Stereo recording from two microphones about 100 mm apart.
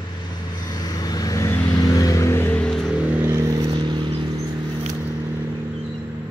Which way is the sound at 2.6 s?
5° left (ahead or behind).